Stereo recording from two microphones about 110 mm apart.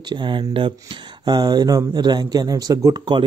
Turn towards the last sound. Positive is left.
turn(degrees=-40)  # may be behind; listen again after turning